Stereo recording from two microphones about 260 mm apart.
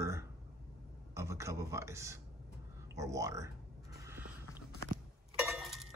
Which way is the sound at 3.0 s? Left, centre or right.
Centre.